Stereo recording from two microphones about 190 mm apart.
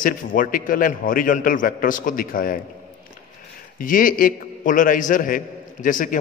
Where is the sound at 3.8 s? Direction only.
45° left (ahead or behind).